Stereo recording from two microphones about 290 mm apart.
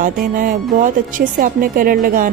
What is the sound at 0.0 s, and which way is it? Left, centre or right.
A woman's voice, right.